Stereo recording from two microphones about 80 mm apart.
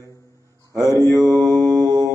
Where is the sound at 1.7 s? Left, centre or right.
Right.